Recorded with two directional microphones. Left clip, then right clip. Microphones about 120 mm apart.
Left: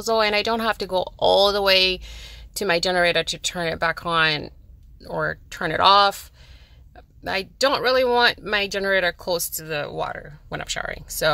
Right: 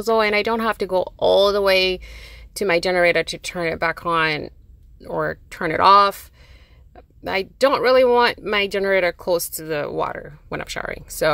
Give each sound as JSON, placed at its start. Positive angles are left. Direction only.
{"t": 0.0, "sound": "speech", "side_deg": -20}
{"t": 7.2, "sound": "speech", "side_deg": -20}